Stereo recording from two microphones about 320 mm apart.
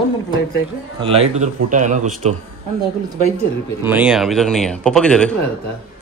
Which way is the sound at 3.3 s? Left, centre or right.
Centre.